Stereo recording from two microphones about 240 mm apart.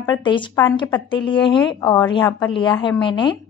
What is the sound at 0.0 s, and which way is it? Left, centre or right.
A woman's voice, centre.